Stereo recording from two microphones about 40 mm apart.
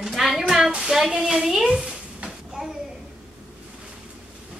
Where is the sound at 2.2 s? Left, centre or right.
Centre.